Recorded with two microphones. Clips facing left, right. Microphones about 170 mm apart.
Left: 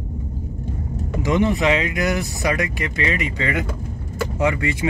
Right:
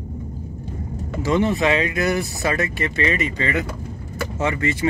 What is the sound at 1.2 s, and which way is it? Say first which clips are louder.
Speech: even; 20° left (ahead or behind).